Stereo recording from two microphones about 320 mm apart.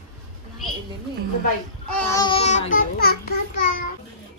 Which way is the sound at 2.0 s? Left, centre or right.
Centre.